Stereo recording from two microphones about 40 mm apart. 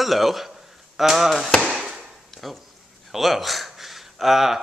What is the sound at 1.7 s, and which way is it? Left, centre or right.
Chop, centre.